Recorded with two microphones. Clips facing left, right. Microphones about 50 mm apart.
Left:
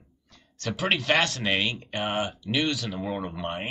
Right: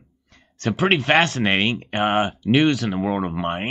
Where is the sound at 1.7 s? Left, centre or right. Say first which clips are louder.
Right 8 dB; right.